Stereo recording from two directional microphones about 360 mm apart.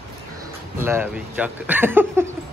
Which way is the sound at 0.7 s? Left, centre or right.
Centre.